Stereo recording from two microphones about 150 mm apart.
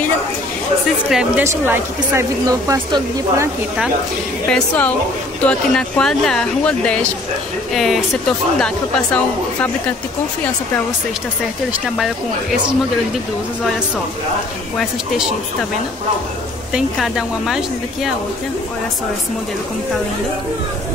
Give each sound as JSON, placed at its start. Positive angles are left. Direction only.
{"t": 1.1, "sound": "speech", "side_deg": -10}
{"t": 4.5, "sound": "speech", "side_deg": 5}
{"t": 16.7, "sound": "speech", "side_deg": 0}